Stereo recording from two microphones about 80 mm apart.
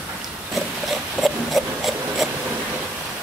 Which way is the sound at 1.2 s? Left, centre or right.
Centre.